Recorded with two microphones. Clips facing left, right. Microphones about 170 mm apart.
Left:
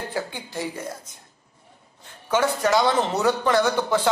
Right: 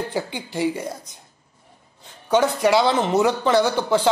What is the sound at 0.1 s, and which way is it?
Speech, 15° right (ahead or behind).